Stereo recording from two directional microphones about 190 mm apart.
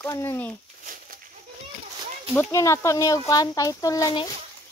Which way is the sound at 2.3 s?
15° left (ahead or behind).